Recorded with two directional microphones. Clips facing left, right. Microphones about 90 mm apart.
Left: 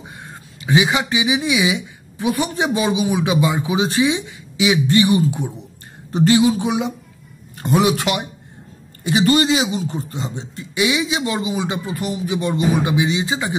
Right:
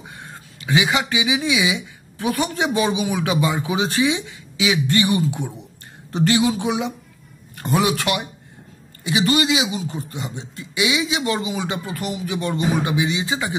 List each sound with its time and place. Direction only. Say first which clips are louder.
0.7 s speech: left 2 dB; 25° left (ahead or behind)
9.0 s speech: left 3 dB; 35° left (ahead or behind)